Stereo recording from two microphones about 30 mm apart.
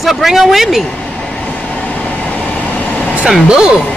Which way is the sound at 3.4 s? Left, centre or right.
Right.